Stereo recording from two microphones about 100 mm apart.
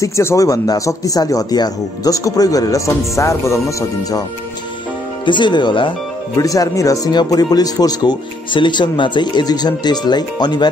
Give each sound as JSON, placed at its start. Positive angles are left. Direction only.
{"t": 0.0, "sound": "speech", "side_deg": 30}
{"t": 5.2, "sound": "speech", "side_deg": 55}
{"t": 6.3, "sound": "speech", "side_deg": 35}